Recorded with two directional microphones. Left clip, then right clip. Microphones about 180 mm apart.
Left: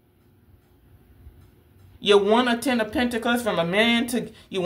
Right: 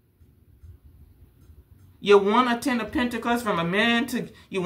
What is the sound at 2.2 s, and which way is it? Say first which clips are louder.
Speech: left 1 dB; 15° right (ahead or behind).